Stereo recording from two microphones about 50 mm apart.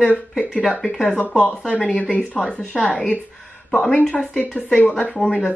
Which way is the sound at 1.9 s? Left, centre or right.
Left.